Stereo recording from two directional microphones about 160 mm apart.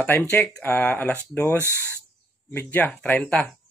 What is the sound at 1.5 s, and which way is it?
Speech, 15° right (ahead or behind).